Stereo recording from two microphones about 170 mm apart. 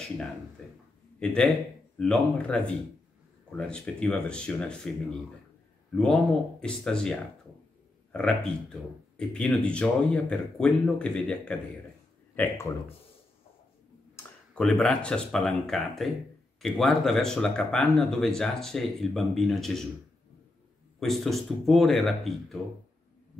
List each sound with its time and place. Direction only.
1.2 s speech: 5° left (ahead or behind)
6.6 s speech: 5° left (ahead or behind)
12.4 s speech: 15° left (ahead or behind)
14.1 s speech: 5° left (ahead or behind)
21.0 s speech: centre (ahead or behind)